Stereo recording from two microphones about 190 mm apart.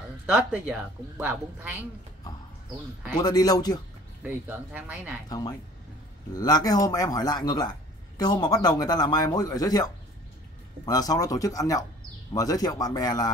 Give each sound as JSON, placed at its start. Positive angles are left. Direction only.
{"t": 0.3, "sound": "a woman's voice", "side_deg": -5}
{"t": 3.2, "sound": "speech", "side_deg": 20}
{"t": 4.2, "sound": "a woman's voice", "side_deg": -10}
{"t": 6.3, "sound": "speech", "side_deg": 20}
{"t": 10.9, "sound": "speech", "side_deg": 20}